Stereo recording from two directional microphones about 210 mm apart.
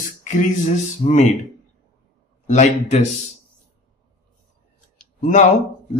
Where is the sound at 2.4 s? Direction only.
35° left (ahead or behind).